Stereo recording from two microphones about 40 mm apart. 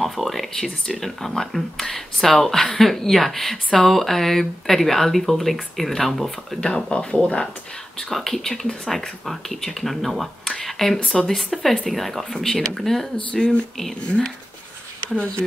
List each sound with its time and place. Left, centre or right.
0.0 s speech: centre
6.6 s speech: centre
8.0 s speech: centre